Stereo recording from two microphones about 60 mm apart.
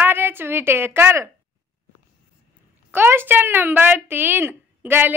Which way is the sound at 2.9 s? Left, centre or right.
Right.